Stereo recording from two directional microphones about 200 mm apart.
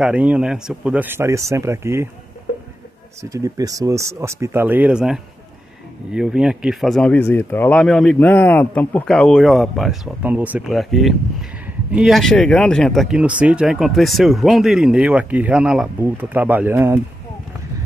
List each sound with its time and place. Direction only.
0.0 s speech: 5° right (ahead or behind)
3.2 s speech: 15° right (ahead or behind)